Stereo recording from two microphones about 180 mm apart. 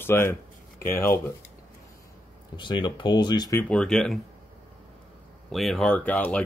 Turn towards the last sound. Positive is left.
turn(degrees=5)  # may be behind; listen again after turning